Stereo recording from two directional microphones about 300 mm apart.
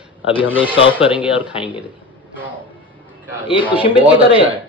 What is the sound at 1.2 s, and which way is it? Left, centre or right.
Speech, centre.